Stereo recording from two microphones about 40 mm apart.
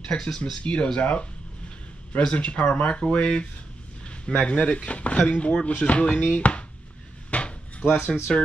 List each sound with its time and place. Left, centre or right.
0.1 s speech: left
0.6 s speech: left
4.0 s a sound: left
4.5 s speech: left
7.2 s a sound: left
7.8 s speech: left
8.3 s speech: centre